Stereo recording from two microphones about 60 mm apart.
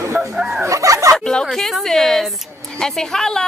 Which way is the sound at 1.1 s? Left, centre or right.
Centre.